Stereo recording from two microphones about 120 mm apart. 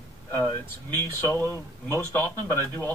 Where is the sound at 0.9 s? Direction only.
20° left (ahead or behind).